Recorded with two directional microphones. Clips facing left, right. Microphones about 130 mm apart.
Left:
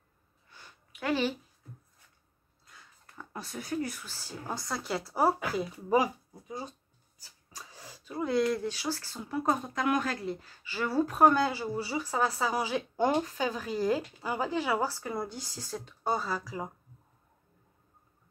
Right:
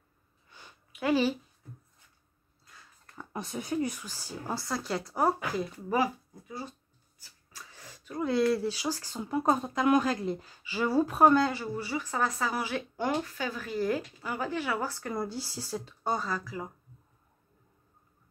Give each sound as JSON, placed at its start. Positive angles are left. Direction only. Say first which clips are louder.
{"t": 0.5, "sound": "a sound", "louder": "right 1 dB", "side_deg": -15}
{"t": 3.2, "sound": "speech", "louder": "right 4 dB", "side_deg": -20}
{"t": 5.9, "sound": "speech", "louder": "left 3 dB", "side_deg": 15}
{"t": 7.5, "sound": "a sound", "louder": "left 2 dB", "side_deg": 10}
{"t": 8.5, "sound": "speech", "louder": "right 2 dB", "side_deg": -10}
{"t": 11.5, "sound": "speech", "louder": "left 1 dB", "side_deg": 15}
{"t": 15.2, "sound": "speech", "louder": "right 4 dB", "side_deg": -5}
{"t": 16.0, "sound": "speech", "louder": "left 1 dB", "side_deg": 5}